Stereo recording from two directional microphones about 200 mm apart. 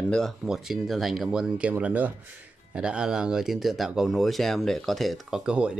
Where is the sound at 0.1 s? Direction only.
Centre (ahead or behind).